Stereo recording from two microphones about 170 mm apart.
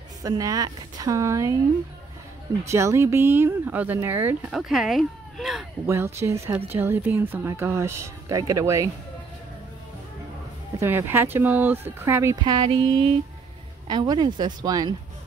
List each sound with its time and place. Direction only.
0.2 s a woman's voice: 20° right (ahead or behind)
2.6 s speech: 15° right (ahead or behind)
4.5 s speech: centre (ahead or behind)
5.9 s speech: 15° right (ahead or behind)
10.8 s speech: 15° right (ahead or behind)
12.6 s a sound: 30° right (ahead or behind)
13.8 s a woman's voice: 25° right (ahead or behind)